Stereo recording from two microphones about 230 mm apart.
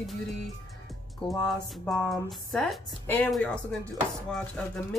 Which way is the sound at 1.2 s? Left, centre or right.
Left.